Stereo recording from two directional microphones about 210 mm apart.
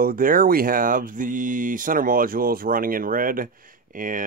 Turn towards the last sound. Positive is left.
turn(degrees=-40)  # may be behind; listen again after turning